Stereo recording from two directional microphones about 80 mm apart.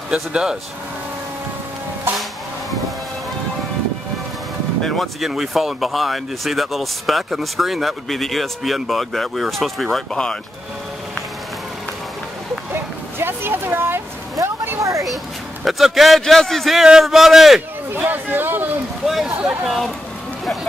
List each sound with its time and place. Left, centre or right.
0.1 s speech: centre
4.8 s speech: centre
12.7 s a sound: right
14.4 s vehicle: right
14.8 s speech: right
15.6 s speech: centre
17.9 s speech: right
19.0 s speech: centre